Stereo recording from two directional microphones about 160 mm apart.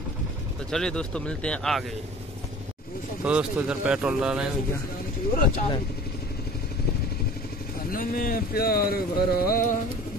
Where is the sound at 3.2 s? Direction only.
5° right (ahead or behind).